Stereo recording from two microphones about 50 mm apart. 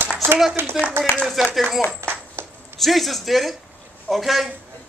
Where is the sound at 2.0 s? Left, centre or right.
Right.